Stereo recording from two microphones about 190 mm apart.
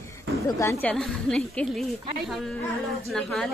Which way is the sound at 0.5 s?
15° left (ahead or behind).